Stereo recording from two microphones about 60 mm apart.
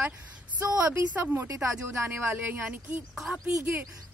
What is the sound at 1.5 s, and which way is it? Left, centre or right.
Speech, right.